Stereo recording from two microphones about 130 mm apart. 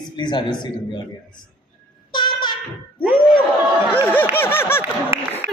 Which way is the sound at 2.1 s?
35° left (ahead or behind).